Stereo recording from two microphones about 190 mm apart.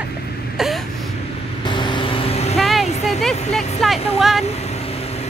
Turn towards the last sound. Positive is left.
turn(degrees=0)  # may be behind; listen again after turning